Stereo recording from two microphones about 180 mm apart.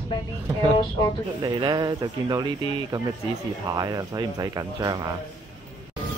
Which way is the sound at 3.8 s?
20° right (ahead or behind).